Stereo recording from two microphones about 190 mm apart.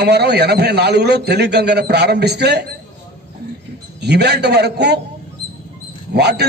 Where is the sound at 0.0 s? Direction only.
60° right (ahead or behind).